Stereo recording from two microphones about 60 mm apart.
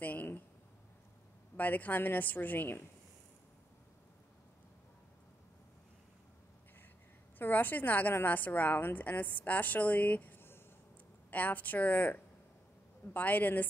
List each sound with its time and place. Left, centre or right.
0.0 s a woman's voice: left
1.6 s a woman's voice: left
7.3 s a woman's voice: left